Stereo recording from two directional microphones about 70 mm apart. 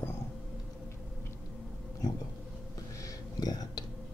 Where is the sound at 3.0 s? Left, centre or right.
Left.